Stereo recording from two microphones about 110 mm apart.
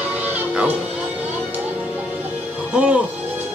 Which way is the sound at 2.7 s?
10° right (ahead or behind).